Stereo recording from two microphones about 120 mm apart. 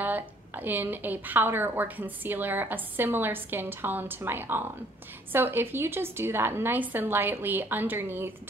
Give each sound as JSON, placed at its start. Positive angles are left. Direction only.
{"t": 0.0, "sound": "a woman's voice", "side_deg": -15}